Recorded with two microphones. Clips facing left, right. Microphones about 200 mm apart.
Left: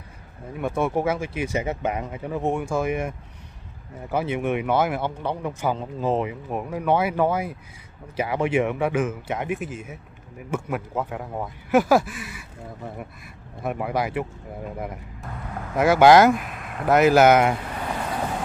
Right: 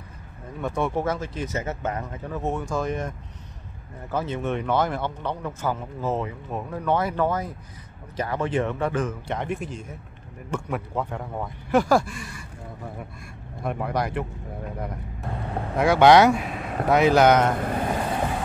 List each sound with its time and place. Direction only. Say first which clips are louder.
0.6 s speech: left 2 dB; 10° left (ahead or behind)
13.6 s speech: left 1 dB; 5° left (ahead or behind)
15.3 s speech: right 4 dB; 30° right (ahead or behind)
15.7 s speech: left 1 dB; 5° left (ahead or behind)